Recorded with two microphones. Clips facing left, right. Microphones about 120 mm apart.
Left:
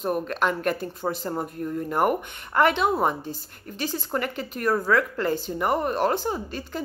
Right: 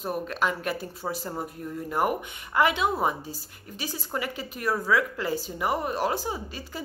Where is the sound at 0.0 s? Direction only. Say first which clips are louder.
Left 3 dB; centre (ahead or behind).